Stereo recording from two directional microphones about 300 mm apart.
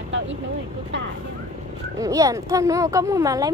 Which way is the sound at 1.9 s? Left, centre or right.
Centre.